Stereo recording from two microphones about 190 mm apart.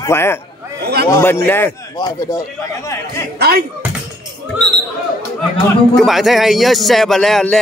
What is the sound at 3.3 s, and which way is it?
Music, 55° right (ahead or behind).